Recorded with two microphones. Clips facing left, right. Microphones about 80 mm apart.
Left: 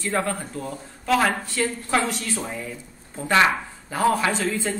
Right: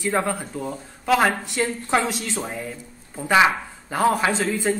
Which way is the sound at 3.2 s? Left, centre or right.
Centre.